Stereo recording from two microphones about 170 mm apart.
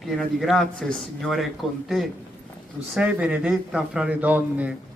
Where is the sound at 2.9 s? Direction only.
5° right (ahead or behind).